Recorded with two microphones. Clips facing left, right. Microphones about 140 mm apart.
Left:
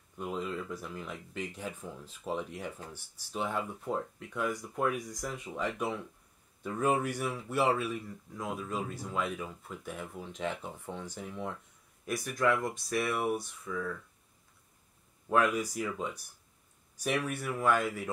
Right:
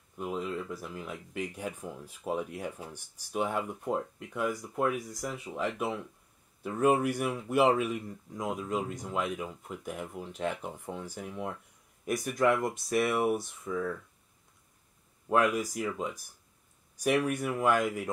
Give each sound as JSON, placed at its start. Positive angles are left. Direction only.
{"t": 0.2, "sound": "speech", "side_deg": -5}
{"t": 12.5, "sound": "speech", "side_deg": 0}
{"t": 12.9, "sound": "speech", "side_deg": -20}
{"t": 13.2, "sound": "speech", "side_deg": 0}
{"t": 13.7, "sound": "speech", "side_deg": -30}
{"t": 15.2, "sound": "speech", "side_deg": -10}
{"t": 16.9, "sound": "speech", "side_deg": -10}